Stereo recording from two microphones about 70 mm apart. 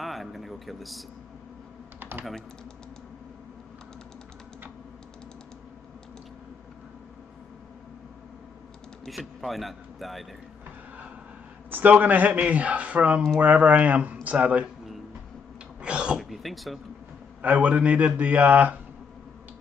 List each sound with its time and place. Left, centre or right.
0.0 s a sound: centre
2.0 s typing: right
9.0 s a man's voice: centre
11.7 s speech: right
15.8 s a sound: centre
16.2 s throat clearing: centre
17.4 s speech: right